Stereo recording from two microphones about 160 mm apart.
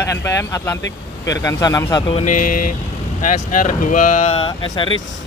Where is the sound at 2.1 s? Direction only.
55° left (ahead or behind).